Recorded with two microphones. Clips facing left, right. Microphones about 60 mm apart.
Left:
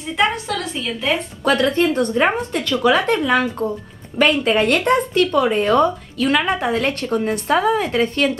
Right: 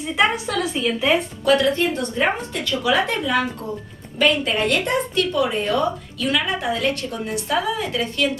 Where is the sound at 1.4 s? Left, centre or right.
Left.